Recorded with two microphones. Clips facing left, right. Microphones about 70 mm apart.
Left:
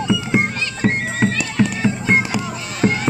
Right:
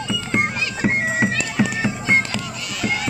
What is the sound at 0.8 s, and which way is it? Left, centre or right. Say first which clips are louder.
Music: left 1 dB; centre.